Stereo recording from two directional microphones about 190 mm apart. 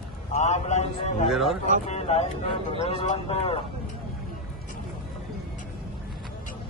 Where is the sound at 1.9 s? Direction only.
35° left (ahead or behind).